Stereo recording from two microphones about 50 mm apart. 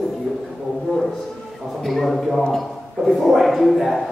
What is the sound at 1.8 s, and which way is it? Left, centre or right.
Speech, centre.